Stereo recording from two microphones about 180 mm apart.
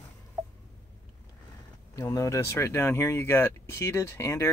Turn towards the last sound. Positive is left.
turn(degrees=15)  # may be behind; listen again after turning